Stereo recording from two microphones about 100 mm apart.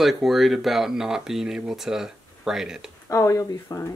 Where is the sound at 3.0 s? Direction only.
30° left (ahead or behind).